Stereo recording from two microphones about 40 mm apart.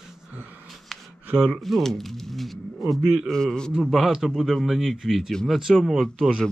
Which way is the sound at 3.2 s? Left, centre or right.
Centre.